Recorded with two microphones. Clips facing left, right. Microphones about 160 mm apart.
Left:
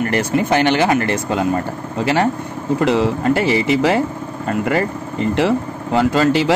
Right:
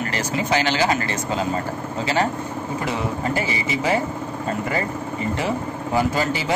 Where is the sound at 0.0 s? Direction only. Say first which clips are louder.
Left 7 dB; 55° left (ahead or behind).